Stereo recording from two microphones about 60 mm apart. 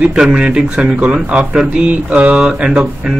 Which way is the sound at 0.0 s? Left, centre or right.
Centre.